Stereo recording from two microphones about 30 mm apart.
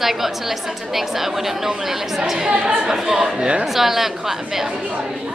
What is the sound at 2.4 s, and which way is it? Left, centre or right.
A woman's voice, right.